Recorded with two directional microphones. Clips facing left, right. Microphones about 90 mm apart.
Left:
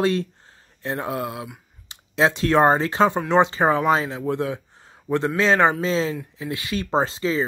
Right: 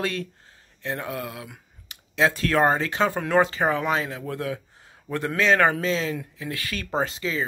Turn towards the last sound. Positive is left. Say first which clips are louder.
# left 5 dB
turn(degrees=30)  # may be behind; listen again after turning